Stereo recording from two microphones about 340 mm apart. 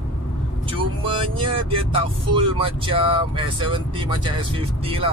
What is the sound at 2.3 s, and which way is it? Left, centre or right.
Speech, centre.